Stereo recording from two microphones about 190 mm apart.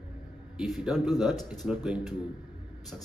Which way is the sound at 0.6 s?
5° right (ahead or behind).